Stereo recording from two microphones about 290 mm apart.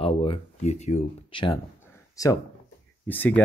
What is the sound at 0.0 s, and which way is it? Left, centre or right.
Speech, centre.